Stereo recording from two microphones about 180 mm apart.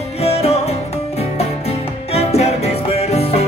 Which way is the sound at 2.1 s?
35° left (ahead or behind).